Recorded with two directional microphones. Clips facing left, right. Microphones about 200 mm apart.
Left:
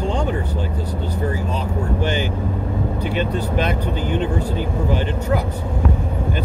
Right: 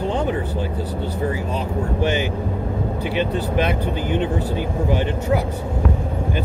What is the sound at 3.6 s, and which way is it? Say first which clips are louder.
Speech: right 2 dB; 10° right (ahead or behind).